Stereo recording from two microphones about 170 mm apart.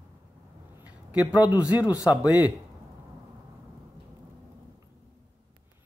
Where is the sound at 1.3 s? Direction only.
10° right (ahead or behind).